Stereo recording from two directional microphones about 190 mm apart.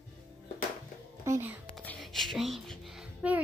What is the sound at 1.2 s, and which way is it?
Speech, 10° right (ahead or behind).